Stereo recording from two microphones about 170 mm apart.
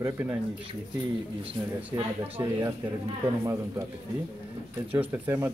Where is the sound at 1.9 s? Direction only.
15° right (ahead or behind).